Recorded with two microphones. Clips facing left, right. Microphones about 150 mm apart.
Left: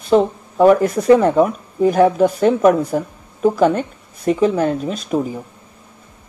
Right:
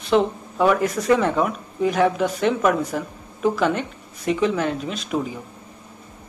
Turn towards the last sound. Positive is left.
turn(degrees=40)  # may be behind; listen again after turning